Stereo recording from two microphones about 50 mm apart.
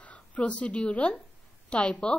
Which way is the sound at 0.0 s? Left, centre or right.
Left.